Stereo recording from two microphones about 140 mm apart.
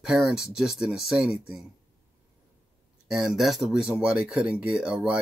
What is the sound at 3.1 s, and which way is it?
Speech, centre (ahead or behind).